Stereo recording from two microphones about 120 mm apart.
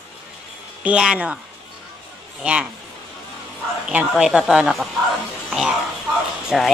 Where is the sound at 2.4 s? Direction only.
10° right (ahead or behind).